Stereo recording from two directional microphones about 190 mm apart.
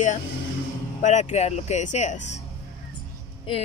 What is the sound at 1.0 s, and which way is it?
Speech, 40° left (ahead or behind).